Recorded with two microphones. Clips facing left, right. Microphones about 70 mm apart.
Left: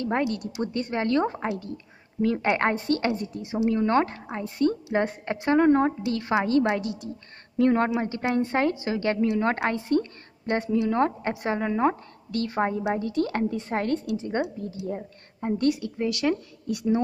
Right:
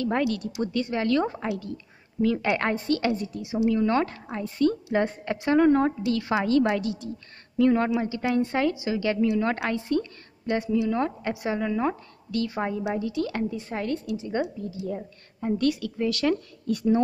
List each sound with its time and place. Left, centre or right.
0.0 s a woman's voice: left
7.5 s a woman's voice: left
15.0 s a woman's voice: left; by 17.0 s centre